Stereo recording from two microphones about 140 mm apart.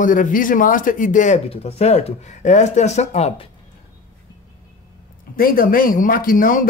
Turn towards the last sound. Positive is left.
turn(degrees=75)  # may be behind; listen again after turning